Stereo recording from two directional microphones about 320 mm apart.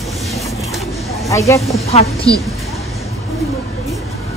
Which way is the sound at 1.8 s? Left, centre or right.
Centre.